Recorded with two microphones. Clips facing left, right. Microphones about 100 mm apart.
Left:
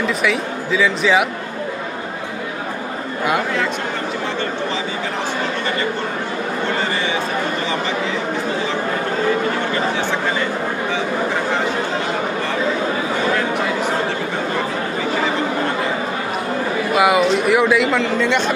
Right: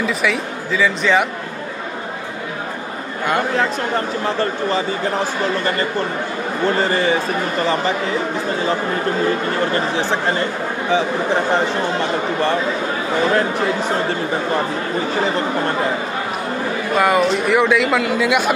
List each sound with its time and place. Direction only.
0.0 s speech: centre (ahead or behind)
6.8 s a man's voice: 40° right (ahead or behind)
16.9 s speech: 5° left (ahead or behind)